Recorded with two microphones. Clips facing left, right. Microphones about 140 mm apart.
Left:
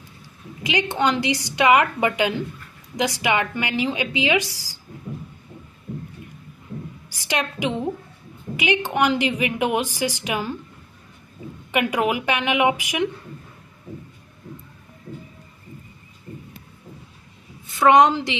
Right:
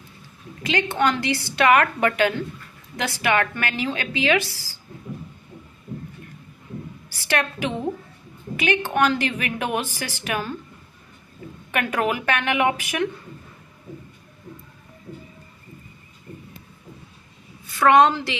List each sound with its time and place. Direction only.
0.7 s a woman's voice: 15° left (ahead or behind)
7.1 s a woman's voice: 15° left (ahead or behind)
11.7 s a woman's voice: 15° left (ahead or behind)
17.6 s a woman's voice: 20° left (ahead or behind)